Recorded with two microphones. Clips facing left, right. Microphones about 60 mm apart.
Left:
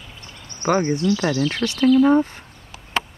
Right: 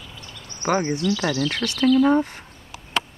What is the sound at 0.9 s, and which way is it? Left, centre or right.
Speech, left.